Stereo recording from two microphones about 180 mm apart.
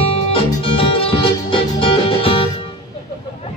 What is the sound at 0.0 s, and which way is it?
Music, 30° left (ahead or behind).